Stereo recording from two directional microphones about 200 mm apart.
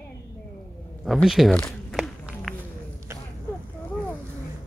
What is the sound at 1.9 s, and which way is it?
Walk, centre (ahead or behind).